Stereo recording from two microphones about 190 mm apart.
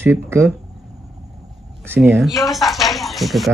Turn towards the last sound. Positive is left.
turn(degrees=0)  # may be behind; listen again after turning